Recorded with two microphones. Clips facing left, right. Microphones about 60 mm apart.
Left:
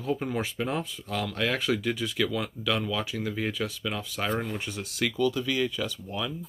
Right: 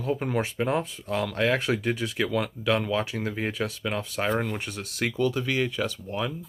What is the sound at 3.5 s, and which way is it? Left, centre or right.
Speech, right.